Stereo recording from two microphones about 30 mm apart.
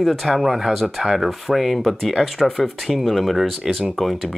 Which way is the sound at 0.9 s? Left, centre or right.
Centre.